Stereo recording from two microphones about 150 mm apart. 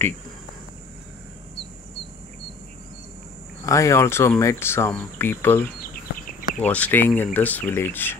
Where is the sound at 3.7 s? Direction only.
20° left (ahead or behind).